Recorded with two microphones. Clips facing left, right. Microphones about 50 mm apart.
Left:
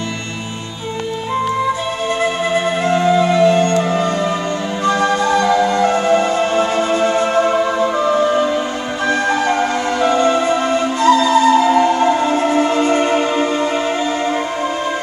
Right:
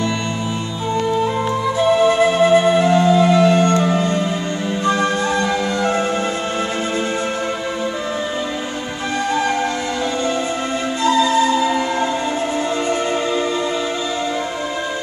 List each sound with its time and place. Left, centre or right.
2.5 s music: centre
5.8 s music: left
10.0 s music: left